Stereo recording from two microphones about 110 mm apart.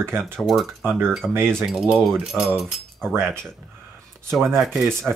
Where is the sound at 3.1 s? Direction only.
25° right (ahead or behind).